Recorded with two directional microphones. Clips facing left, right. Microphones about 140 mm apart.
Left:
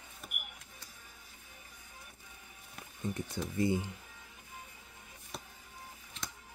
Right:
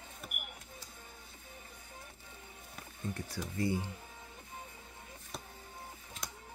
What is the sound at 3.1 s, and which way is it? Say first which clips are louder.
Speech: left 4 dB; 20° left (ahead or behind).